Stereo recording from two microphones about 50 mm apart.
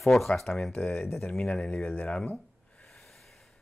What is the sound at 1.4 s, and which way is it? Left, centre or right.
Speech, centre.